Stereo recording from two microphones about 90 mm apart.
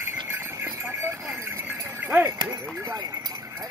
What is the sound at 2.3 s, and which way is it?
Clip-clop, 45° right (ahead or behind).